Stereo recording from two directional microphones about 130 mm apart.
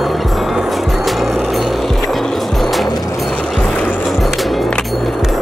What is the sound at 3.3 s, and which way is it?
Music, 5° left (ahead or behind).